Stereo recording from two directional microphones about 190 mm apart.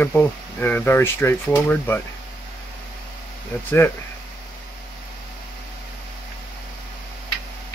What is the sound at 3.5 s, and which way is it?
Speech, 15° left (ahead or behind).